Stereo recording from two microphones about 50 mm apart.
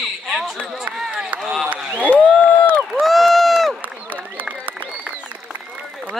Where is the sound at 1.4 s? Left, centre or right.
Centre.